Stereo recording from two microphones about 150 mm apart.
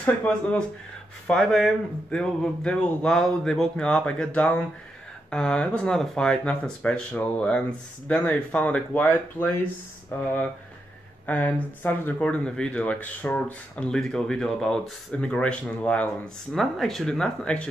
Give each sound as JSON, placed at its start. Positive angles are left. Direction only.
{"t": 0.0, "sound": "speech", "side_deg": 10}
{"t": 11.2, "sound": "speech", "side_deg": 10}